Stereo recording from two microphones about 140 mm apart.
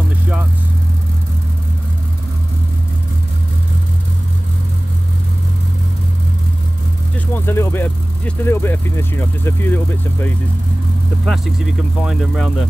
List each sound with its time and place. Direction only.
7.3 s speech: 15° left (ahead or behind)
11.2 s speech: centre (ahead or behind)